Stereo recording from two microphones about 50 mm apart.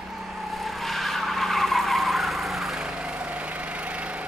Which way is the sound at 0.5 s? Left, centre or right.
Centre.